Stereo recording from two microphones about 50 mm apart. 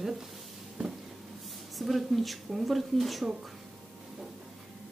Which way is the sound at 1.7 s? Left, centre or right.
Centre.